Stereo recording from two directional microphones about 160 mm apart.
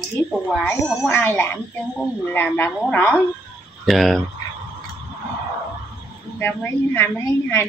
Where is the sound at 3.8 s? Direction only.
Centre (ahead or behind).